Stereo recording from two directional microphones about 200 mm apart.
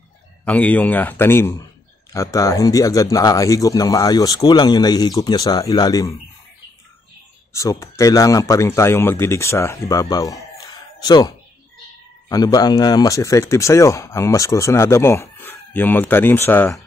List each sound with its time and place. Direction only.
0.5 s speech: 5° left (ahead or behind)
7.8 s speech: 15° left (ahead or behind)